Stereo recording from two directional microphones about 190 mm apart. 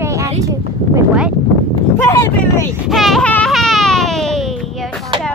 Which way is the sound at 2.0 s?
15° left (ahead or behind).